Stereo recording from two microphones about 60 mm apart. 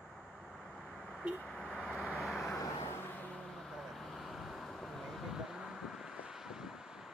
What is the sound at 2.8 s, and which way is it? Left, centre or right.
Vehicle, left.